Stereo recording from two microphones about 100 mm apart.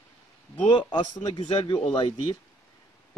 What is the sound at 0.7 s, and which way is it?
A man's voice, 65° left (ahead or behind).